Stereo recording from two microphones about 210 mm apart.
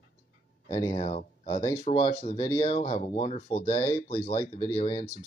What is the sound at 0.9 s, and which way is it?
Speech, 30° left (ahead or behind).